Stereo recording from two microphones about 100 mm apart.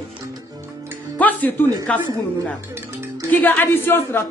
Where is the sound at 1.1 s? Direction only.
15° left (ahead or behind).